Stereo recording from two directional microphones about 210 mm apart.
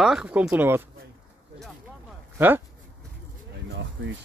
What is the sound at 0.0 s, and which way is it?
Speech, 5° right (ahead or behind).